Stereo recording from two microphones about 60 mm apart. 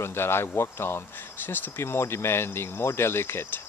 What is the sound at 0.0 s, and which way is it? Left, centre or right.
Speech, left.